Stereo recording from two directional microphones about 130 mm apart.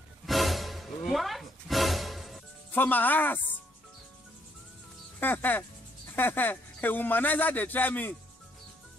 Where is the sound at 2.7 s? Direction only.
15° left (ahead or behind).